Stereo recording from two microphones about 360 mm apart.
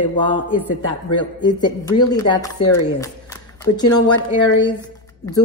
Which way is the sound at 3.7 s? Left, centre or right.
Centre.